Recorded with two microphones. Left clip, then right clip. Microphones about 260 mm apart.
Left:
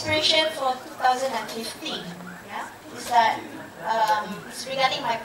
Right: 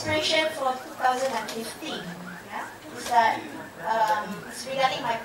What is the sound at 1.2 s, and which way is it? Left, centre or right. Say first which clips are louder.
Speech: left 1 dB; centre.